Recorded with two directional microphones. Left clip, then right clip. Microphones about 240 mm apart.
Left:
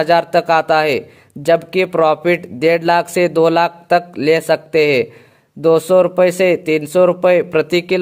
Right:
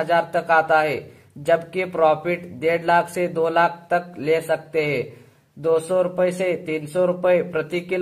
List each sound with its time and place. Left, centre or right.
0.0 s speech: left